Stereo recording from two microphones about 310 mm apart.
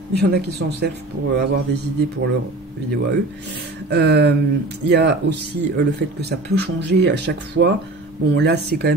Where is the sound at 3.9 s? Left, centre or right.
Right.